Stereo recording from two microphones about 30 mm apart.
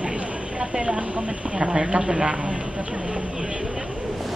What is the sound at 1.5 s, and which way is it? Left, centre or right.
A woman's voice, right.